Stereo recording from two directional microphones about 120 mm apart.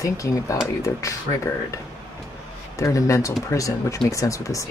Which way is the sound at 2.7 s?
25° left (ahead or behind).